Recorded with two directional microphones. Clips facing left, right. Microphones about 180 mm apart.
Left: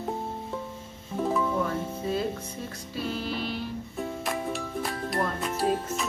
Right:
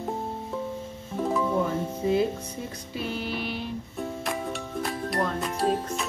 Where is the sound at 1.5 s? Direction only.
15° right (ahead or behind).